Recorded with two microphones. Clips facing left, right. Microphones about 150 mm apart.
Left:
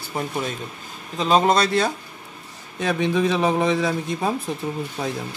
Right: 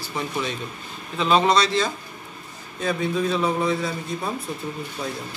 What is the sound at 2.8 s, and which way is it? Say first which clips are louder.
A man's voice: left 3 dB; 90° left.